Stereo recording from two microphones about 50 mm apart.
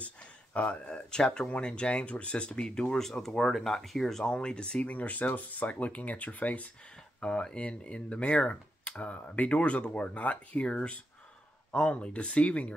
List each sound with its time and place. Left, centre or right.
0.0 s speech: left
4.8 s speech: left